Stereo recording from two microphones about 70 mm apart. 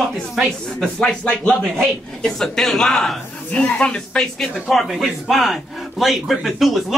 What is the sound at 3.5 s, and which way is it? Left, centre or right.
Speech, centre.